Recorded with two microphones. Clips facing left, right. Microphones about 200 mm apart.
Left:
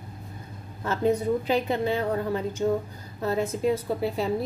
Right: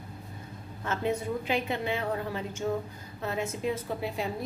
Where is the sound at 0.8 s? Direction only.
35° left (ahead or behind).